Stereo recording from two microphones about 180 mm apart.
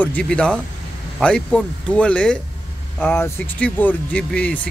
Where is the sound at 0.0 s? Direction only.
5° left (ahead or behind).